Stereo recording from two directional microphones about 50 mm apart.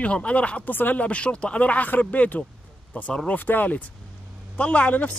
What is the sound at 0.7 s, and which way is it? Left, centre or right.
Speech, left.